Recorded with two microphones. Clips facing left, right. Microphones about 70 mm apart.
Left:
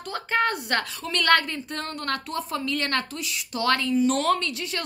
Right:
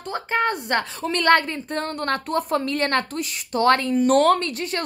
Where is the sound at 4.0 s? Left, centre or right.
Right.